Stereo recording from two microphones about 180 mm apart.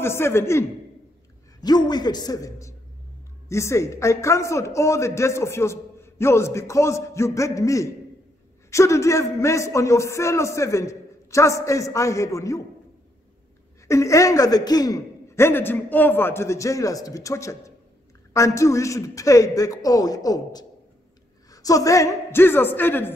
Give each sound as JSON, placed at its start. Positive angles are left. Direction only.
{"t": 0.0, "sound": "a man's voice", "side_deg": 15}
{"t": 13.8, "sound": "a man's voice", "side_deg": 15}